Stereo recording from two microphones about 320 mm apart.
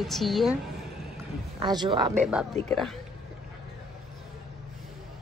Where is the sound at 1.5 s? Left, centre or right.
Centre.